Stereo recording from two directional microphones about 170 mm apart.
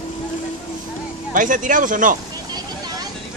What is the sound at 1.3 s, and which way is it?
Speech, 50° right (ahead or behind).